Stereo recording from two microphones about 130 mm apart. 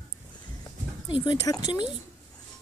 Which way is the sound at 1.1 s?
35° left (ahead or behind).